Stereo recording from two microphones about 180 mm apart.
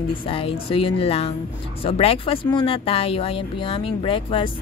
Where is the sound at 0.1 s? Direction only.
30° left (ahead or behind).